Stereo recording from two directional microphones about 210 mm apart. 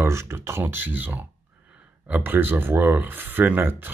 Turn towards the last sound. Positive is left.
turn(degrees=-10)  # may be behind; listen again after turning